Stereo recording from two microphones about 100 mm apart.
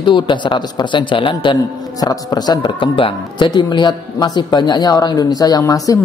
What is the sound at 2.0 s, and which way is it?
Speech, 40° left (ahead or behind).